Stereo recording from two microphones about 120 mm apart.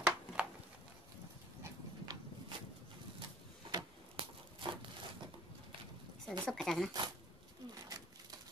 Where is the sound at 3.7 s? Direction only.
40° right (ahead or behind).